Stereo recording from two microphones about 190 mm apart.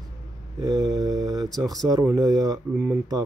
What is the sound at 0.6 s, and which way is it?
Mantra, 20° right (ahead or behind).